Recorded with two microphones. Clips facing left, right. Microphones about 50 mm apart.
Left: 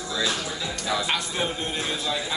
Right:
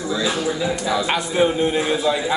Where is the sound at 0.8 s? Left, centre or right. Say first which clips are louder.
Right 2 dB; centre.